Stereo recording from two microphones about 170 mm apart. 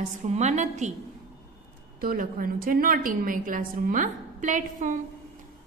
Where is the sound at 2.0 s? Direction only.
55° right (ahead or behind).